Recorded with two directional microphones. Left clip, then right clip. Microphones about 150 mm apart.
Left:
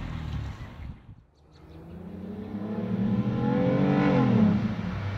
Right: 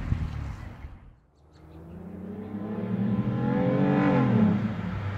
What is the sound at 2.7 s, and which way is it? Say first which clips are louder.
Vehicle: left 1 dB; 15° right (ahead or behind).